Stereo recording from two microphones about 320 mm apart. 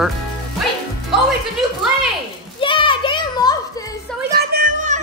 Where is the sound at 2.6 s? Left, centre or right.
Centre.